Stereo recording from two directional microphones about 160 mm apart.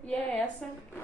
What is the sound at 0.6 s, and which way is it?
Speech, 5° left (ahead or behind).